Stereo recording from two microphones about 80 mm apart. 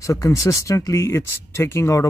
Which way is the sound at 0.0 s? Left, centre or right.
Left.